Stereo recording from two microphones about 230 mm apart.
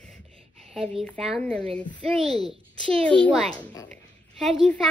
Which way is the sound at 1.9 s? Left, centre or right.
Centre.